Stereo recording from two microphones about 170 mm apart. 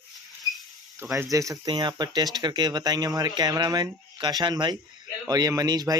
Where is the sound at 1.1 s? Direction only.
20° right (ahead or behind).